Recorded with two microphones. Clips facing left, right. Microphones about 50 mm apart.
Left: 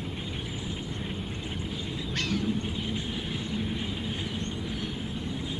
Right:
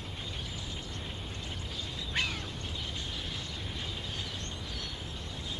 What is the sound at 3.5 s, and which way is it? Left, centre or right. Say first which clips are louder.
Vehicle: left 9 dB; left.